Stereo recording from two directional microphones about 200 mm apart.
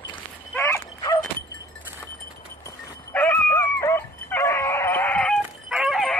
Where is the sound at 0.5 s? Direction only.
15° left (ahead or behind).